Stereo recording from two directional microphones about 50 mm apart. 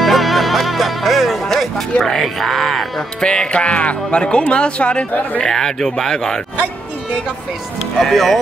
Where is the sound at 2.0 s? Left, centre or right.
Centre.